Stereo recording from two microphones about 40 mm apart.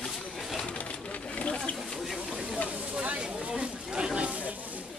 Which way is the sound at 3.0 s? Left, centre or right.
Right.